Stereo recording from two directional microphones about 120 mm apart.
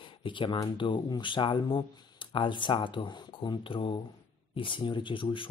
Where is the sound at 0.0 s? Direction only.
45° left (ahead or behind).